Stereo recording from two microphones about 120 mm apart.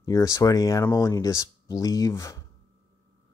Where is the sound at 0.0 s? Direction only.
25° left (ahead or behind).